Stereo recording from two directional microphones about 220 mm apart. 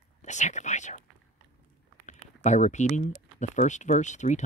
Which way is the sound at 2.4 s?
35° left (ahead or behind).